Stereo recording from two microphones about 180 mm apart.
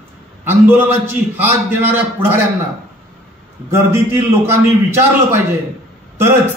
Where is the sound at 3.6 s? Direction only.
15° right (ahead or behind).